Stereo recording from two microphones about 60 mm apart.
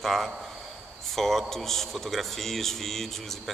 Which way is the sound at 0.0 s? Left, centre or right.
Centre.